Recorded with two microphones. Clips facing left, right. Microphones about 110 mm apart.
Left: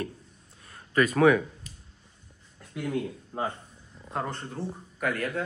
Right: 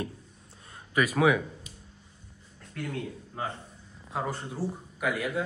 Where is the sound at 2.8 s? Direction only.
10° left (ahead or behind).